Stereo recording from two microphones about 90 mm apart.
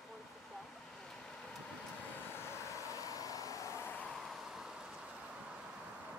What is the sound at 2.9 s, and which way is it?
Vehicle, 40° left (ahead or behind).